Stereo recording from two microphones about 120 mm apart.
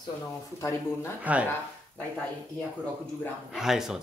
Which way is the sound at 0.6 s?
25° left (ahead or behind).